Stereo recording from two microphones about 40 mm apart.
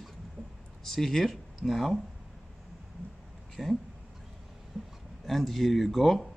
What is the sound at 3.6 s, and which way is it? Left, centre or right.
Speech, centre.